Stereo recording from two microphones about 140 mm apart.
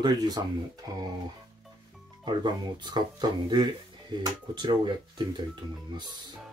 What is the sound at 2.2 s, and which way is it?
Speech, 30° right (ahead or behind).